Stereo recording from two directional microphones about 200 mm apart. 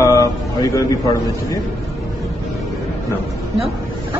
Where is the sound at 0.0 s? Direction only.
15° left (ahead or behind).